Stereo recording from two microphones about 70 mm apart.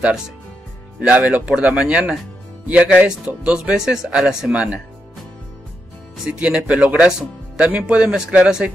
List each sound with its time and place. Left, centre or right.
0.9 s speech: centre
6.2 s speech: centre